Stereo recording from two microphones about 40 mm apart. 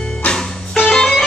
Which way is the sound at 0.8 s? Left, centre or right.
Centre.